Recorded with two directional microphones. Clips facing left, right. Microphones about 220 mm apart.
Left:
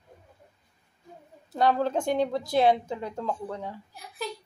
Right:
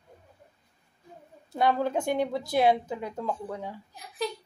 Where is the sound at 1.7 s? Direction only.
10° right (ahead or behind).